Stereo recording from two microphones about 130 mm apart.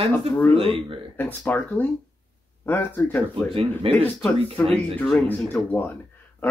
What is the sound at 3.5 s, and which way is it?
Speech, 50° right (ahead or behind).